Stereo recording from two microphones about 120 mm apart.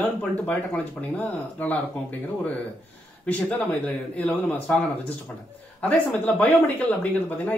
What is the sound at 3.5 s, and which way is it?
Speech, 10° left (ahead or behind).